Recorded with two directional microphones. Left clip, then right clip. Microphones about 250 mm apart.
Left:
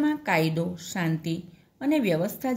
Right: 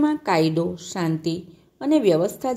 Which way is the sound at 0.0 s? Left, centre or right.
Centre.